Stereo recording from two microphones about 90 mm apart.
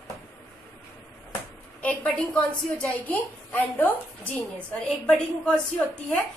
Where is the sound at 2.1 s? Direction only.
15° left (ahead or behind).